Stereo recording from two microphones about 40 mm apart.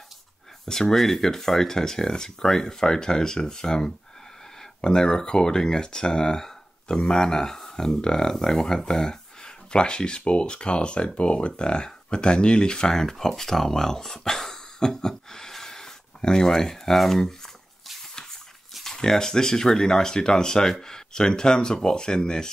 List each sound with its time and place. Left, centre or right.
0.7 s speech: centre
18.9 s speech: centre